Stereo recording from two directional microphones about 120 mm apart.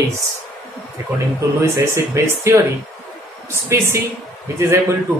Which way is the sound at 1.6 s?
25° right (ahead or behind).